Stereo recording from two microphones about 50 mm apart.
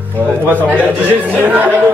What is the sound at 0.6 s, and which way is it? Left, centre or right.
Speech, right.